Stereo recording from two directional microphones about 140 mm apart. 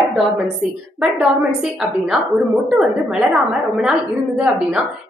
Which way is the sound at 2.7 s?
Centre (ahead or behind).